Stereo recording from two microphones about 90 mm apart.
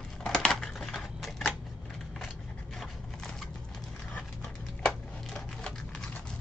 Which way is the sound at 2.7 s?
5° left (ahead or behind).